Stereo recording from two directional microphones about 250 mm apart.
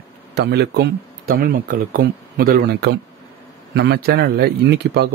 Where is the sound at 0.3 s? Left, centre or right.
Right.